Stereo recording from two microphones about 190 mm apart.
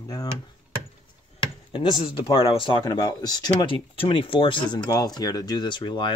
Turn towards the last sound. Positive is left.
turn(degrees=25)  # may be behind; listen again after turning